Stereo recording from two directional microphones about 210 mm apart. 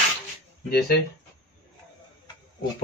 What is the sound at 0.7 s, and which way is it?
Speech, 45° left (ahead or behind).